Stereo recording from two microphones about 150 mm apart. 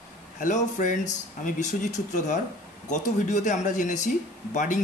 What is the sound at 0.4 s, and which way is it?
Speech, 55° left (ahead or behind).